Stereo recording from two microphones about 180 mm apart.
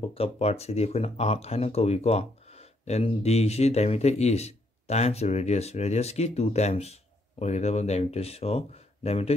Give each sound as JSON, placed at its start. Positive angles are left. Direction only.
{"t": 0.1, "sound": "speech", "side_deg": 35}